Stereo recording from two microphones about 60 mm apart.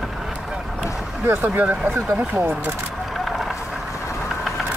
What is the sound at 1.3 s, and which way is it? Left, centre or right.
Speech, right.